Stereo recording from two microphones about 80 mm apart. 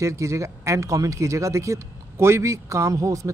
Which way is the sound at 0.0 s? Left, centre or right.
Right.